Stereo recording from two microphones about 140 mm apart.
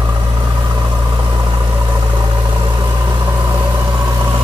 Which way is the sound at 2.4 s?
30° right (ahead or behind).